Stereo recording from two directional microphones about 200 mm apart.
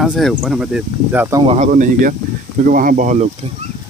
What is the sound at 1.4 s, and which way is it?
Speech, 30° right (ahead or behind).